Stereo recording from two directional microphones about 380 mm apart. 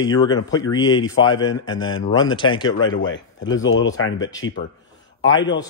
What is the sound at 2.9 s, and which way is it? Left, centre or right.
Speech, left.